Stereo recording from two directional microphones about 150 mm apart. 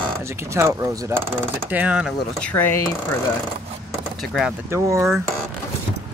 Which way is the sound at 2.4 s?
10° left (ahead or behind).